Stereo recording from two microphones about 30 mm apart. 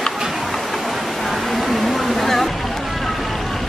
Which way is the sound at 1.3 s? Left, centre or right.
Centre.